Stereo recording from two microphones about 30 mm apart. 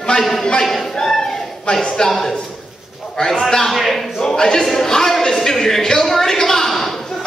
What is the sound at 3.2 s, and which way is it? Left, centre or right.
A man's voice, centre.